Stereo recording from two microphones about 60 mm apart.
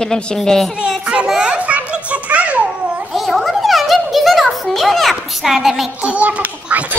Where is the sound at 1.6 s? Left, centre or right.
Right.